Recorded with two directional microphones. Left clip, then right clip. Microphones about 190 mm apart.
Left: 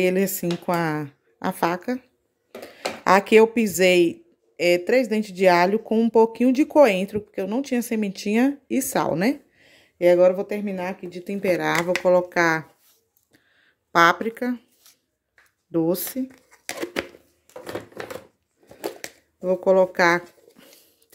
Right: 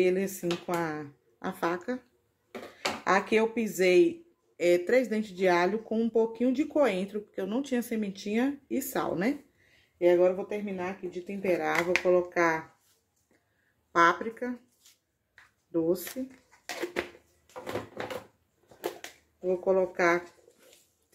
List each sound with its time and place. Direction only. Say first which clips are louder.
0.0 s speech: left 5 dB; 45° left (ahead or behind)
3.0 s speech: left 11 dB; 45° left (ahead or behind)
4.6 s speech: left 5 dB; 30° left (ahead or behind)
9.9 s speech: left 7 dB; 55° left (ahead or behind)
13.9 s speech: left 7 dB; 50° left (ahead or behind)
15.7 s speech: left 6 dB; 50° left (ahead or behind)
16.4 s a sound: left 5 dB; 45° left (ahead or behind)
19.4 s speech: left 8 dB; 55° left (ahead or behind)